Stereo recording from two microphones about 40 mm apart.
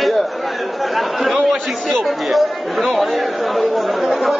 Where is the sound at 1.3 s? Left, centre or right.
Centre.